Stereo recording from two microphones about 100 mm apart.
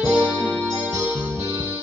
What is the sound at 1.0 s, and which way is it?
Music, 15° right (ahead or behind).